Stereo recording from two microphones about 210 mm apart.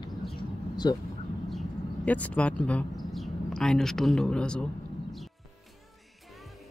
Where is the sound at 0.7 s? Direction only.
20° left (ahead or behind).